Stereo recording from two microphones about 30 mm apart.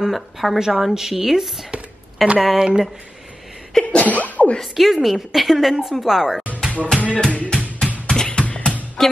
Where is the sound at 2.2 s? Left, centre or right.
Centre.